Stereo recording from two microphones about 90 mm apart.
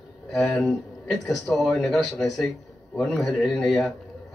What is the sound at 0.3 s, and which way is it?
A man's voice, centre (ahead or behind).